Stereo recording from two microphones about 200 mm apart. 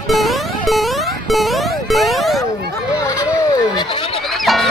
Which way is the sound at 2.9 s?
15° left (ahead or behind).